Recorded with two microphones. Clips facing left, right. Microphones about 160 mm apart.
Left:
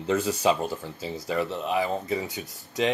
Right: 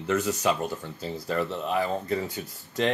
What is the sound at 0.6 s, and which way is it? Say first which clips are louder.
Speech: left 1 dB; 5° left (ahead or behind).